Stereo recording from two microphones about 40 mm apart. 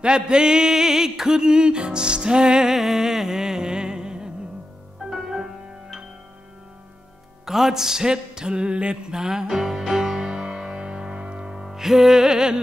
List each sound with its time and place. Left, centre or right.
0.0 s music: right
2.6 s music: centre
7.4 s music: centre